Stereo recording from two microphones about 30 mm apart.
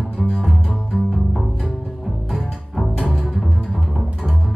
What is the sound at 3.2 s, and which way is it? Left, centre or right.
Double bass, centre.